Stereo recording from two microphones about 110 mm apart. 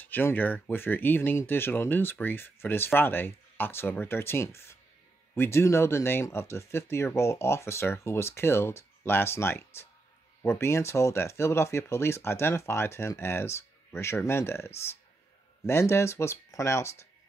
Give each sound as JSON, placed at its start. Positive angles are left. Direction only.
{"t": 0.0, "sound": "speech", "side_deg": 20}